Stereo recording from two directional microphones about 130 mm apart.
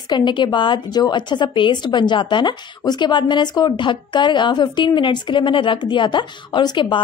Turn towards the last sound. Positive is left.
turn(degrees=35)  # may be behind; listen again after turning